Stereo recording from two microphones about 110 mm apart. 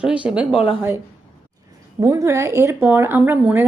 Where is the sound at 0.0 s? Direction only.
10° right (ahead or behind).